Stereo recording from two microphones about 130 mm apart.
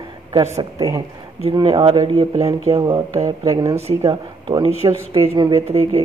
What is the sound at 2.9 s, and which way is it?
Speech, 30° right (ahead or behind).